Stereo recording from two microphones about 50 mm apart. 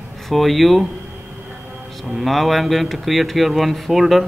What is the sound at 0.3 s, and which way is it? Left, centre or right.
Speech, centre.